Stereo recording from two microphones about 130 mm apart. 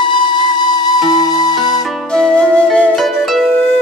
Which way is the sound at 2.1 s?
5° left (ahead or behind).